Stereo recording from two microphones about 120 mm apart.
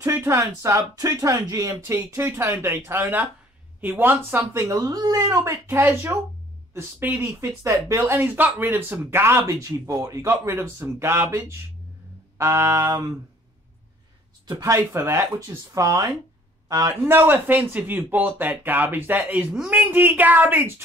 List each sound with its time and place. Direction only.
0.0 s speech: 25° right (ahead or behind)
14.6 s a man's voice: 20° right (ahead or behind)
17.0 s speech: 20° right (ahead or behind)